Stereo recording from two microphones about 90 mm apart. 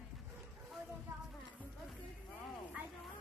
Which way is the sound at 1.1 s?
35° right (ahead or behind).